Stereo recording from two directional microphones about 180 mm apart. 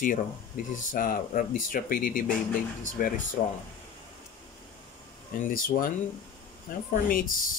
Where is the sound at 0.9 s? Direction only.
50° left (ahead or behind).